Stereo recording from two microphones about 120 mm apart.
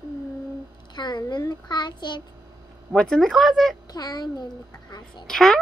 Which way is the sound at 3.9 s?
35° left (ahead or behind).